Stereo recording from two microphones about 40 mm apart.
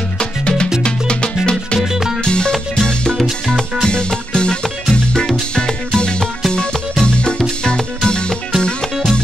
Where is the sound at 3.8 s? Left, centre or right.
Left.